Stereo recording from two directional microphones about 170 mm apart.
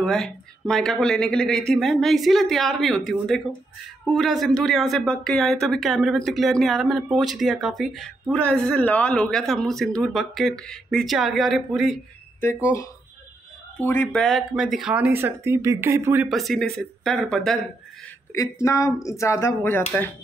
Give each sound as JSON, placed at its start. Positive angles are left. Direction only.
{"t": 0.0, "sound": "speech", "side_deg": 0}
{"t": 13.8, "sound": "speech", "side_deg": 5}
{"t": 16.3, "sound": "speech", "side_deg": 0}
{"t": 18.3, "sound": "speech", "side_deg": 20}